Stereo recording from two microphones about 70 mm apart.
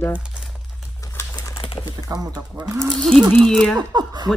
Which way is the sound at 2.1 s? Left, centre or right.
Right.